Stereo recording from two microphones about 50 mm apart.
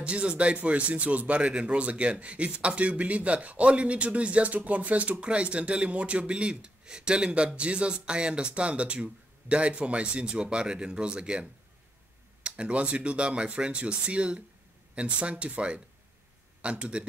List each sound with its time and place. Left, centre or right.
0.0 s speech: right
12.4 s speech: right